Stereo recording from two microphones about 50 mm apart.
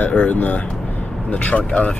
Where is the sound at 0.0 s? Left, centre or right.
Left.